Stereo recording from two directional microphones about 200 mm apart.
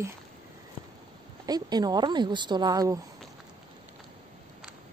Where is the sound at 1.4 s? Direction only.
20° right (ahead or behind).